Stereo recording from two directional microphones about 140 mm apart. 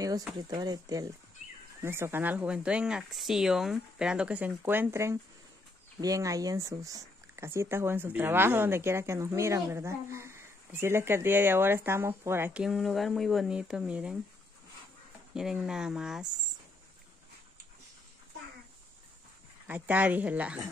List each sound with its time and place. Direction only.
0.5 s speech: 30° right (ahead or behind)
12.6 s speech: centre (ahead or behind)
15.3 s speech: 5° right (ahead or behind)
19.7 s speech: 10° right (ahead or behind)